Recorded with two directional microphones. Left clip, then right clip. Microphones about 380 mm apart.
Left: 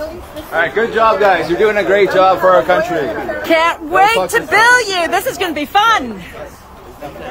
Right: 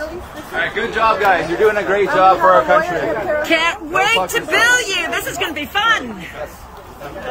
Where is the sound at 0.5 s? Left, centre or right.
Centre.